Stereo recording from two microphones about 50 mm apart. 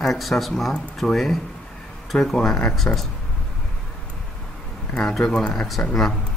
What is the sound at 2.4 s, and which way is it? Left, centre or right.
Speech, centre.